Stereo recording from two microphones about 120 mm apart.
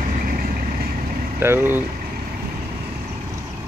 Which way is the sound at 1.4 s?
20° right (ahead or behind).